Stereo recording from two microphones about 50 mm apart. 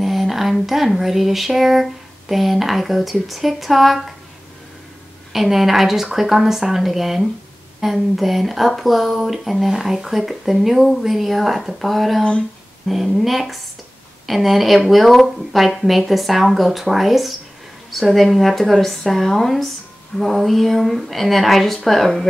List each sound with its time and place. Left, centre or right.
0.0 s speech: centre
5.3 s speech: centre
12.2 s speech: centre
12.8 s speech: centre